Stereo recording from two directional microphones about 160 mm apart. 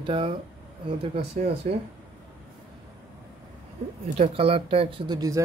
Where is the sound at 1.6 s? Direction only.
45° right (ahead or behind).